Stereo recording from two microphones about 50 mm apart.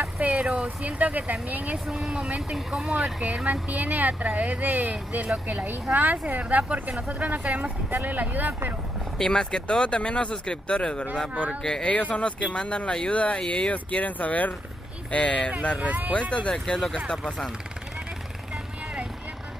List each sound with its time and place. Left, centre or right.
0.2 s vehicle: right
0.5 s speech: right
1.9 s speech: centre
2.9 s speech: right
9.2 s speech: centre
15.8 s speech: right
16.1 s speech: left
16.5 s speech: centre